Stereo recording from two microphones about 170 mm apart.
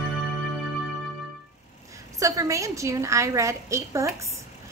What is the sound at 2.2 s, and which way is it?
A woman's voice, 20° right (ahead or behind).